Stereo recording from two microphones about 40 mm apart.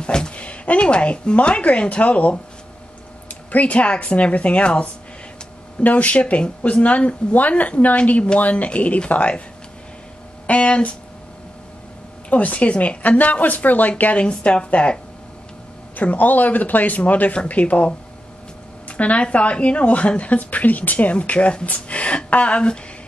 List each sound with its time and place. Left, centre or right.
0.0 s a sound: left
0.4 s speech: left
10.4 s speech: left
12.3 s speech: left
14.1 s speech: left
16.0 s speech: left